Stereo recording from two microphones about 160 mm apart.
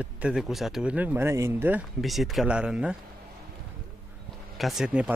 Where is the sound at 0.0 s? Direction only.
5° right (ahead or behind).